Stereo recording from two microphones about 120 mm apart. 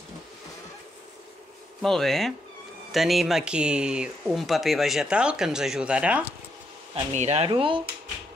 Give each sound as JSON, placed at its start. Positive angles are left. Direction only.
{"t": 1.8, "sound": "speech", "side_deg": 5}
{"t": 7.1, "sound": "speech", "side_deg": -65}
{"t": 7.4, "sound": "speech", "side_deg": -45}